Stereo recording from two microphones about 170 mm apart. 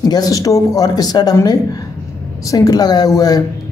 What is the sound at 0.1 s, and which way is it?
Speech, 20° left (ahead or behind).